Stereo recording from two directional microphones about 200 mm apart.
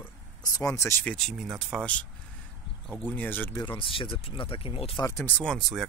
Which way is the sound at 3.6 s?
25° left (ahead or behind).